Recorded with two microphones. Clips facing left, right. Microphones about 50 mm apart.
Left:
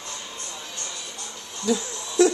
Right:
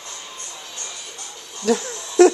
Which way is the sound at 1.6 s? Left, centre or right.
Right.